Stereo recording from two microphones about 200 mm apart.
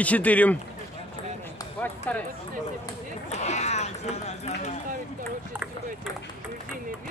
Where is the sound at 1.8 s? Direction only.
10° left (ahead or behind).